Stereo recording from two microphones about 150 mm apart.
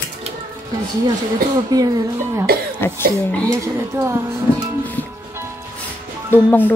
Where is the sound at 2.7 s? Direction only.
15° left (ahead or behind).